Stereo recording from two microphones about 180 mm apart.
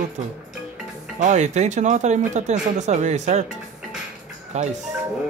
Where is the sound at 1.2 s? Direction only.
40° right (ahead or behind).